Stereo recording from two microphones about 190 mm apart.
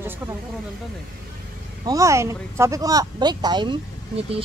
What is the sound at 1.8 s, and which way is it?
Speech, 15° right (ahead or behind).